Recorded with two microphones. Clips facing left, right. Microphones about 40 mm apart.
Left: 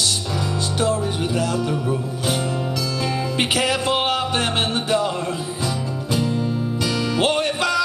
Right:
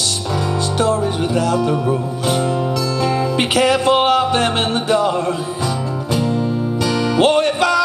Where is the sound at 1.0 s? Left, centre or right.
Centre.